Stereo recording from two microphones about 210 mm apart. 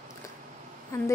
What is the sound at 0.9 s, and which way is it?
Speech, 15° left (ahead or behind).